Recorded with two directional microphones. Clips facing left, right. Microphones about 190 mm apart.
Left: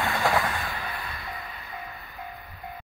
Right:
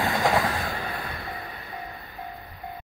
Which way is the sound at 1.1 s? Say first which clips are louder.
Right 3 dB; 30° right (ahead or behind).